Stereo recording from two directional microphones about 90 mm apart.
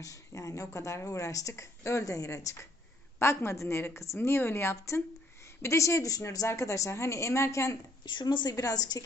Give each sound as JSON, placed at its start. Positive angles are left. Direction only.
{"t": 0.0, "sound": "a woman's voice", "side_deg": 40}
{"t": 8.0, "sound": "a woman's voice", "side_deg": 60}
{"t": 8.5, "sound": "a woman's voice", "side_deg": 45}